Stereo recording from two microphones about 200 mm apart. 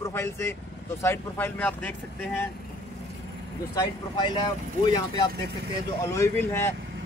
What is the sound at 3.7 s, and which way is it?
Speech, 20° left (ahead or behind).